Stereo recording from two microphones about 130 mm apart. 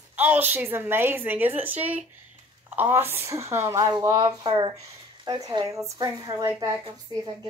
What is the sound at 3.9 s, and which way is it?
Speech, 30° right (ahead or behind).